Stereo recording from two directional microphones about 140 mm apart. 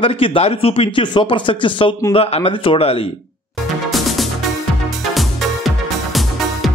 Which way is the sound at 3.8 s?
Centre (ahead or behind).